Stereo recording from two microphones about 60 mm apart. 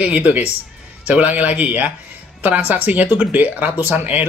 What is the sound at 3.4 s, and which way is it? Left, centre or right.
Speech, right.